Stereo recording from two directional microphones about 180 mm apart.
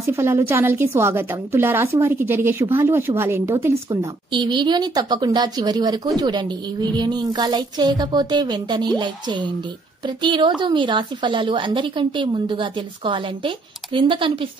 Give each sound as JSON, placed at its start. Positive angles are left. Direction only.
{"t": 0.0, "sound": "a woman's voice", "side_deg": -15}